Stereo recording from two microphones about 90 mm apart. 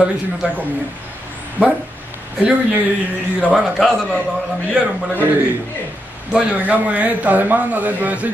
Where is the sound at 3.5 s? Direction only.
5° right (ahead or behind).